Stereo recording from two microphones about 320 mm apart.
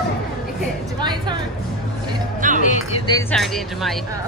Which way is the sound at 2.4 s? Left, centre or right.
Right.